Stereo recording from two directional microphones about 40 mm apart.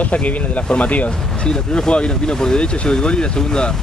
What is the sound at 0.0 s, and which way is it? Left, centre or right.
Speech, left.